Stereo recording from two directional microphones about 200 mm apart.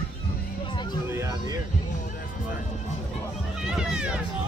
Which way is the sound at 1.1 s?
15° right (ahead or behind).